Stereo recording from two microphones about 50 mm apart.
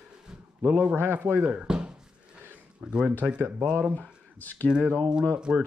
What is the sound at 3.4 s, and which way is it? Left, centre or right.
Speech, right.